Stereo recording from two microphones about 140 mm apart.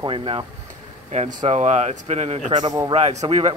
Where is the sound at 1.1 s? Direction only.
55° right (ahead or behind).